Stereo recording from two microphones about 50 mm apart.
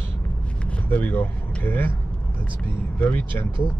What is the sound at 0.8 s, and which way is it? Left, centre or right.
Speech, left.